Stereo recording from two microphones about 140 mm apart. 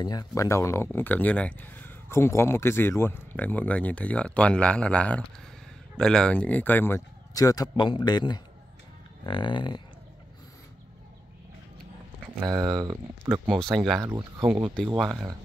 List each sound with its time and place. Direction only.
0.0 s speech: 30° left (ahead or behind)
12.4 s speech: 30° right (ahead or behind)
13.7 s speech: centre (ahead or behind)
14.0 s speech: 15° right (ahead or behind)